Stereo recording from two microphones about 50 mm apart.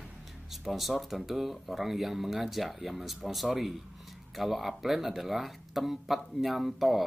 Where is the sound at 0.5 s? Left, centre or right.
Centre.